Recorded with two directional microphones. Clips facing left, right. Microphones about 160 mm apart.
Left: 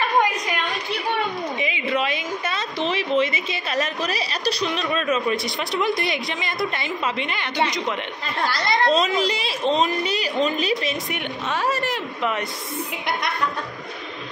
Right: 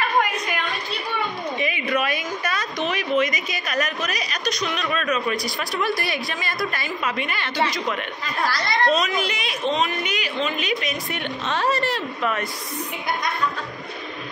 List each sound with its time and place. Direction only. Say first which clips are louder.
1.6 s a woman's voice: right 1 dB; 20° left (ahead or behind)
11.1 s speech: even; 15° left (ahead or behind)